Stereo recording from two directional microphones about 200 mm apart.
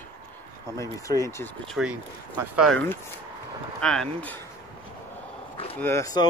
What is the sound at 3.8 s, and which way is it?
Speech, 5° left (ahead or behind).